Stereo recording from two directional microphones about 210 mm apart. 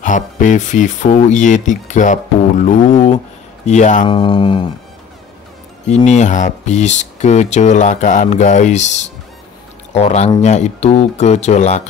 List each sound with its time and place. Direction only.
0.0 s speech: 35° left (ahead or behind)
4.1 s speech: 25° left (ahead or behind)
5.9 s speech: 35° left (ahead or behind)